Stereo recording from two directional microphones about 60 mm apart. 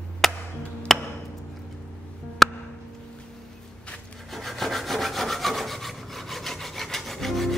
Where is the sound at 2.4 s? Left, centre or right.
Centre.